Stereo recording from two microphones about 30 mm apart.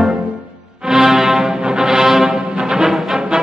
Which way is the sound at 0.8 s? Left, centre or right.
Centre.